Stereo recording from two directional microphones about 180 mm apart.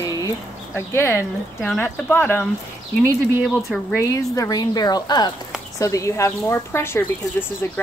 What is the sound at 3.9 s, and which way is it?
A woman's voice, 15° left (ahead or behind).